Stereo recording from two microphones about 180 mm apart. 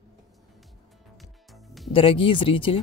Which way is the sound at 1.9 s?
30° left (ahead or behind).